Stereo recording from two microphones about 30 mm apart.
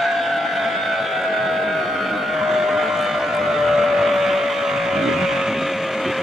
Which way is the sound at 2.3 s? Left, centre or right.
Centre.